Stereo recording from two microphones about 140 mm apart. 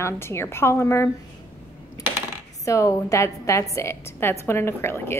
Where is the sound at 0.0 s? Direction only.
20° left (ahead or behind).